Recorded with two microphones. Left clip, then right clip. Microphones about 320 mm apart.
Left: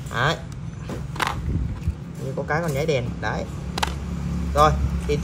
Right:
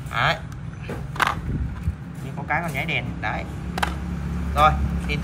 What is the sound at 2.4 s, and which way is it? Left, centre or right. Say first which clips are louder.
Speech: left 1 dB; left.